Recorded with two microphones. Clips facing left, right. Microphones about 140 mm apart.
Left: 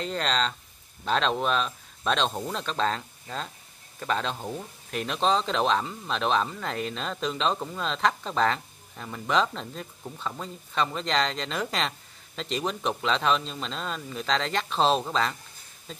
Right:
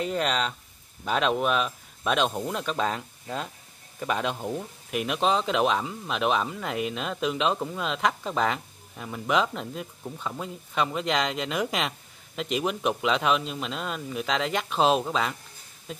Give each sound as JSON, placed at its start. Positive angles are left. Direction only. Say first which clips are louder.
{"t": 0.0, "sound": "speech", "louder": "right 1 dB", "side_deg": -10}